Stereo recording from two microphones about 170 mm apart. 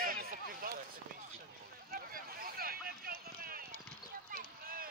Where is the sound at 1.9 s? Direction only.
60° right (ahead or behind).